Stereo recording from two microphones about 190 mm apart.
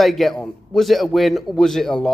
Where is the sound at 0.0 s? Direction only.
Centre (ahead or behind).